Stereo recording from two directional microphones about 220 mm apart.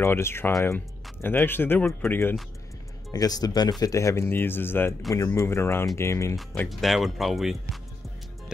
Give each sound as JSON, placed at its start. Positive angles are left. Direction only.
{"t": 0.0, "sound": "speech", "side_deg": 10}